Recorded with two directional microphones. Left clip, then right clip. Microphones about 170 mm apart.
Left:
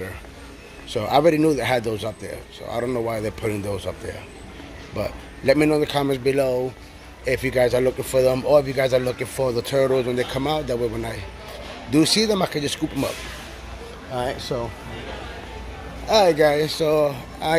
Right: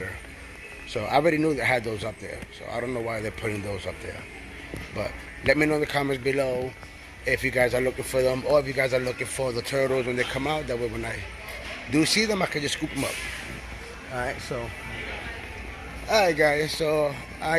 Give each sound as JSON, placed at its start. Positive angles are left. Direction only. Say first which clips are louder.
{"t": 0.9, "sound": "a man's voice", "louder": "left 5 dB", "side_deg": 10}
{"t": 4.9, "sound": "a man's voice", "louder": "left 5 dB", "side_deg": 15}
{"t": 9.8, "sound": "a man's voice", "louder": "left 4 dB", "side_deg": 10}
{"t": 14.1, "sound": "a man's voice", "louder": "left 5 dB", "side_deg": 15}
{"t": 16.1, "sound": "a man's voice", "louder": "left 5 dB", "side_deg": 15}